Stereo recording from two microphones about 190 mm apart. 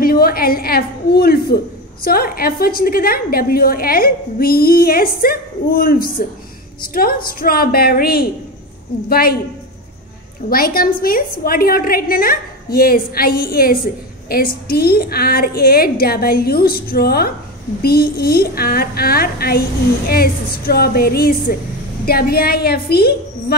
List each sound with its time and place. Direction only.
0.0 s a woman's voice: 50° left (ahead or behind)
10.5 s a woman's voice: 50° left (ahead or behind)